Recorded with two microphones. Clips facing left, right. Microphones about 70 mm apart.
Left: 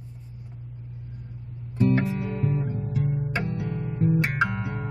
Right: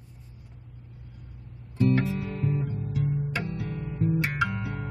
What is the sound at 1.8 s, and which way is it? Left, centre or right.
Music, left.